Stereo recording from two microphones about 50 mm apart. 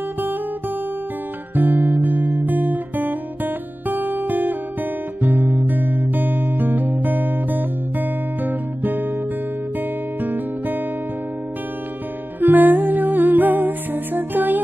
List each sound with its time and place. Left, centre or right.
1.5 s guitar: right
5.2 s music: right
10.2 s music: right
12.4 s music: right